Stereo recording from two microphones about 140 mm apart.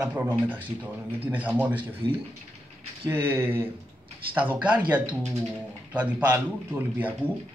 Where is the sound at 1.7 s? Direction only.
40° right (ahead or behind).